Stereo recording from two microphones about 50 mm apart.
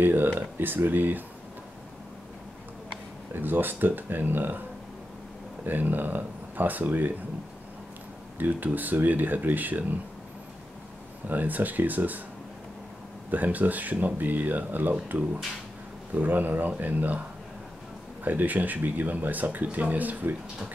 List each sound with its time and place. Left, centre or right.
0.0 s speech: right
3.3 s speech: right
5.7 s speech: right
8.4 s speech: right
11.2 s speech: right
13.3 s speech: right
18.2 s speech: right